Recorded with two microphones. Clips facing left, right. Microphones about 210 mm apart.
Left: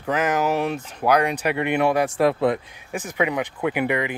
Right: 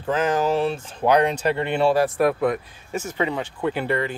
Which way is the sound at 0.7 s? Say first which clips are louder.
Right 1 dB; 15° left (ahead or behind).